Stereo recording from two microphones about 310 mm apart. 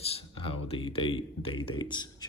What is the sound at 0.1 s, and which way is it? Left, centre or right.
Speech, centre.